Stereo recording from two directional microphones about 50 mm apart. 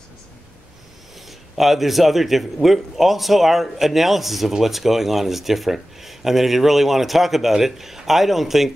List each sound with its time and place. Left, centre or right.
1.6 s a man's voice: centre